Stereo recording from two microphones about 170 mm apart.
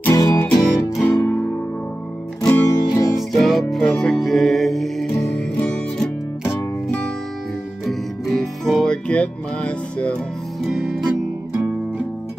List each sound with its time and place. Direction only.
0.0 s music: 20° left (ahead or behind)
0.9 s music: 5° left (ahead or behind)
2.4 s music: 15° left (ahead or behind)
3.2 s music: centre (ahead or behind)
7.9 s music: centre (ahead or behind)